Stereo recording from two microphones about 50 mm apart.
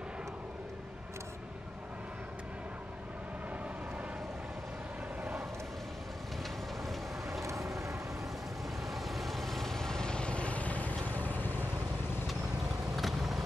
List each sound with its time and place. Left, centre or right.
7.4 s vehicle: right
8.9 s vehicle: centre; by 11.6 s left
12.9 s vehicle: centre